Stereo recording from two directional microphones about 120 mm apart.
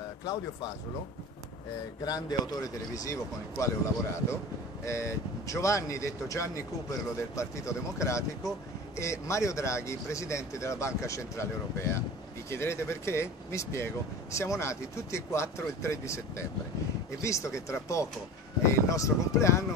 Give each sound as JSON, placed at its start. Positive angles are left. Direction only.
{"t": 0.2, "sound": "speech", "side_deg": 35}
{"t": 2.0, "sound": "speech", "side_deg": 35}
{"t": 12.4, "sound": "speech", "side_deg": 20}